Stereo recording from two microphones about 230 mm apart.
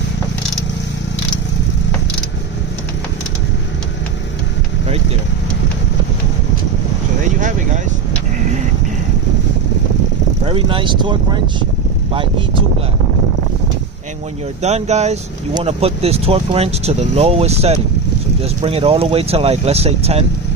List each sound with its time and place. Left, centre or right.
7.2 s vehicle: right
10.4 s a sound: right
12.1 s speech: right
14.6 s speech: right